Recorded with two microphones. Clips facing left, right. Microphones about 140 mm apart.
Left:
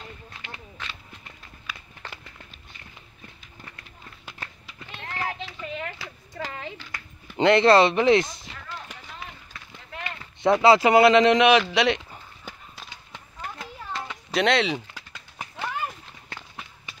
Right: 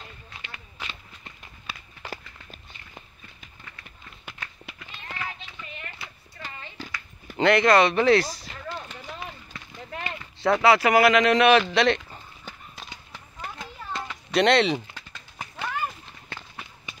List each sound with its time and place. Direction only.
0.8 s run: 10° right (ahead or behind)
1.7 s walk: 30° right (ahead or behind)
2.0 s walk: 10° right (ahead or behind)
5.9 s a sound: 90° left
7.3 s speech: 25° left (ahead or behind)
10.4 s speech: 25° left (ahead or behind)
13.6 s a sound: centre (ahead or behind)